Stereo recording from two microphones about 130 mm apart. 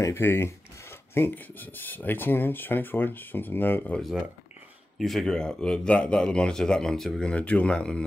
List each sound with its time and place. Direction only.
0.0 s speech: 20° left (ahead or behind)
4.0 s speech: 5° right (ahead or behind)